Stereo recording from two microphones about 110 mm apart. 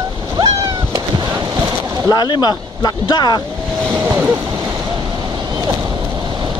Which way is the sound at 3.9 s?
20° right (ahead or behind).